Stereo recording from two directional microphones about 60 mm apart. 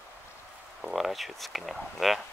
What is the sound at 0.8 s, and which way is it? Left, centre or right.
Speech, centre.